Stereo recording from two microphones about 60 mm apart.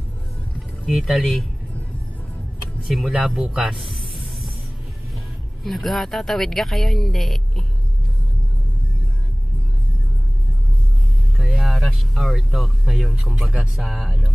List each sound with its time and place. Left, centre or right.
0.8 s speech: centre
2.9 s speech: centre
5.6 s speech: centre
11.3 s speech: centre
13.8 s speech: centre